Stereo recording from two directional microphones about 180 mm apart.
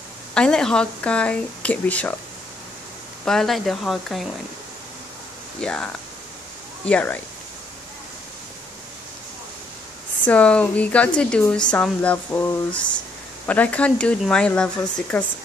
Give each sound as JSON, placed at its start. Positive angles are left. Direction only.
{"t": 0.3, "sound": "speech", "side_deg": 5}
{"t": 3.3, "sound": "speech", "side_deg": 0}
{"t": 5.6, "sound": "speech", "side_deg": 5}
{"t": 6.9, "sound": "speech", "side_deg": 5}
{"t": 10.2, "sound": "speech", "side_deg": 5}